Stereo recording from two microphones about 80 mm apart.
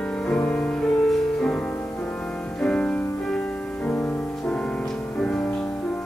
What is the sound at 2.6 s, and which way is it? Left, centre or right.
Music, centre.